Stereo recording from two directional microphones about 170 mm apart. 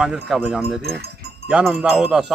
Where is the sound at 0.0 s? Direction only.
5° right (ahead or behind).